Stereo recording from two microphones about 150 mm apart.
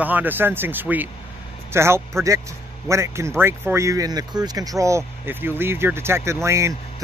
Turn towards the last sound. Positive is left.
turn(degrees=-20)  # may be behind; listen again after turning